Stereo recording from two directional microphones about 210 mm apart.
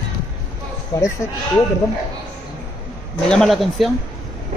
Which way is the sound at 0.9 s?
15° left (ahead or behind).